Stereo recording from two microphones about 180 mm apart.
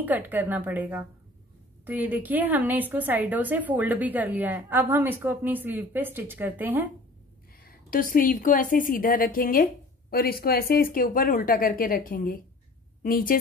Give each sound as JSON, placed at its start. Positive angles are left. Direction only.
{"t": 0.0, "sound": "a woman's voice", "side_deg": -10}
{"t": 7.9, "sound": "a woman's voice", "side_deg": 50}